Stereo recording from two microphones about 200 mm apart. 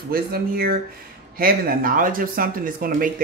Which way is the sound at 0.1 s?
50° right (ahead or behind).